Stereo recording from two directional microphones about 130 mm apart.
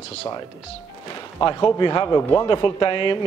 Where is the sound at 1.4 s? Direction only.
40° left (ahead or behind).